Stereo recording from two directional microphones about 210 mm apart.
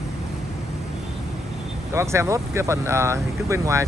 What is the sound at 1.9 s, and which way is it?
Speech, 15° right (ahead or behind).